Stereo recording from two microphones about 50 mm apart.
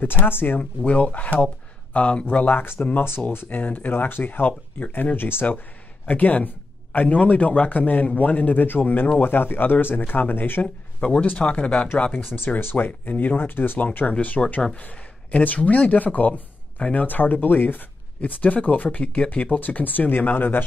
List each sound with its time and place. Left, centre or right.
0.2 s speech: left
0.6 s speech: left
5.1 s speech: left
6.0 s speech: left
11.1 s speech: left
12.1 s speech: left
13.4 s speech: left
14.0 s speech: centre
14.8 s speech: left